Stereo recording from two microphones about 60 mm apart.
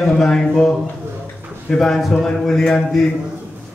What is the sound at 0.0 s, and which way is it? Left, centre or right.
Speech, centre.